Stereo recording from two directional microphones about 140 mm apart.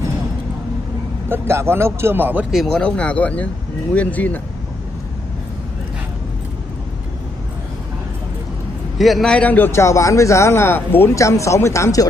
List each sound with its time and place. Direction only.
1.3 s speech: 20° right (ahead or behind)
2.5 s speech: centre (ahead or behind)
8.9 s a man's voice: centre (ahead or behind); by 12.1 s 25° left (ahead or behind)